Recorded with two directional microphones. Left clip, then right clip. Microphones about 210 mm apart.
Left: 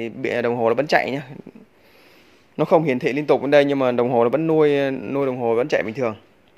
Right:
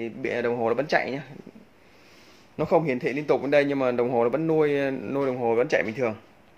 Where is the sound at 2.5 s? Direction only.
45° left (ahead or behind); by 6.1 s 30° left (ahead or behind).